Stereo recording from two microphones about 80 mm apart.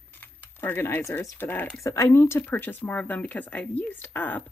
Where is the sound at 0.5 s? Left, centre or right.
Left.